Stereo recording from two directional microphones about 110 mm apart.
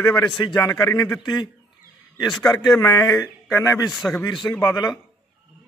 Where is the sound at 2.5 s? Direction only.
25° left (ahead or behind).